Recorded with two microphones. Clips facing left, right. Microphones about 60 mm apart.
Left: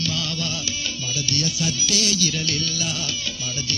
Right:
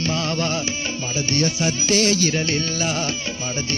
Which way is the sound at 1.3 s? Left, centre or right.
Right.